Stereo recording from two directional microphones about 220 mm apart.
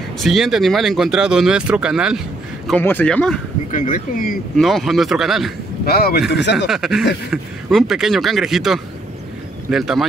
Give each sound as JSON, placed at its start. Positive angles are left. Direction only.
{"t": 0.2, "sound": "speech", "side_deg": 0}
{"t": 2.7, "sound": "speech", "side_deg": 10}
{"t": 3.7, "sound": "speech", "side_deg": 35}
{"t": 4.6, "sound": "speech", "side_deg": 0}
{"t": 5.9, "sound": "speech", "side_deg": 45}
{"t": 6.7, "sound": "speech", "side_deg": 0}